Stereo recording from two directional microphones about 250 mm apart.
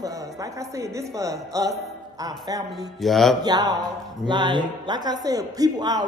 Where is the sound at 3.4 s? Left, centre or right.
Centre.